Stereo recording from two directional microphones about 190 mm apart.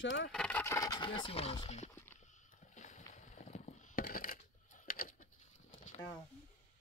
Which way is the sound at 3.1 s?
40° left (ahead or behind).